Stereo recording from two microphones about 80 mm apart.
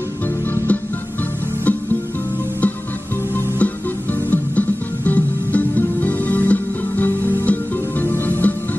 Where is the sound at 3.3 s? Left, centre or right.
Left.